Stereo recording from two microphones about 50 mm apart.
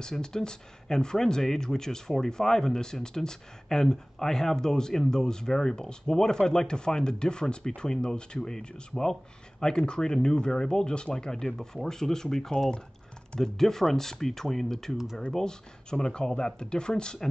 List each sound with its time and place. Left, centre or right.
0.0 s speech: centre